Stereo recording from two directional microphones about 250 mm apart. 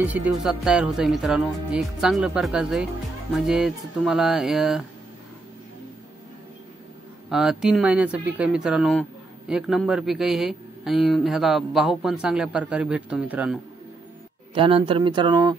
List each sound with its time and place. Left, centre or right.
0.0 s a man's voice: centre
7.2 s a man's voice: centre
14.5 s speech: right